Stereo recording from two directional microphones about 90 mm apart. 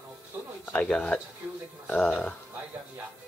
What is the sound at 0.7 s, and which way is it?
Speech, 15° left (ahead or behind).